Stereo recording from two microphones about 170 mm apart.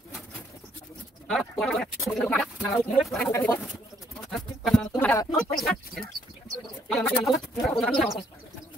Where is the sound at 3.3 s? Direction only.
15° left (ahead or behind).